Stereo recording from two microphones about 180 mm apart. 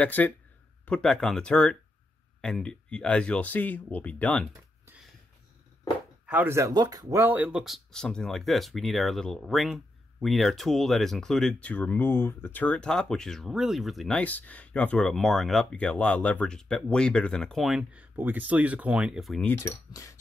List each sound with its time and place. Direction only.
0.0 s speech: 10° left (ahead or behind)
6.2 s speech: 10° right (ahead or behind)
19.5 s speech: 15° left (ahead or behind)